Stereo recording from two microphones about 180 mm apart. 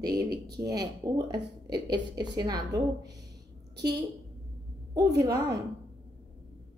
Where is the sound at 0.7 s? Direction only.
20° right (ahead or behind).